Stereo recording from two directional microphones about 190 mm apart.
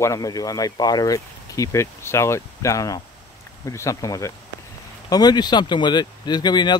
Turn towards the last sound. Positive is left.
turn(degrees=20)  # may be behind; listen again after turning